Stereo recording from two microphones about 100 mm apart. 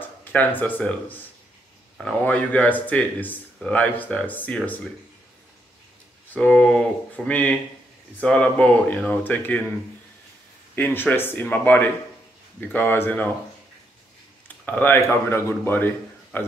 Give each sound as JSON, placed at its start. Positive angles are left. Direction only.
{"t": 0.0, "sound": "speech", "side_deg": 15}
{"t": 2.2, "sound": "speech", "side_deg": 15}
{"t": 6.3, "sound": "speech", "side_deg": 10}
{"t": 10.8, "sound": "speech", "side_deg": 20}
{"t": 14.7, "sound": "speech", "side_deg": 20}